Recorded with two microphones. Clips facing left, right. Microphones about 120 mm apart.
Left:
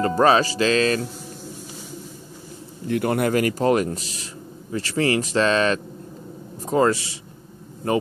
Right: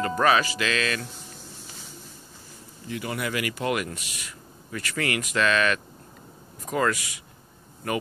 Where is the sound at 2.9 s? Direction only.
55° left (ahead or behind).